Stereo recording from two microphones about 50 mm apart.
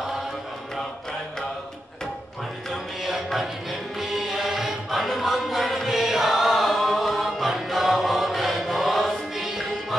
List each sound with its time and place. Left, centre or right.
2.7 s music: centre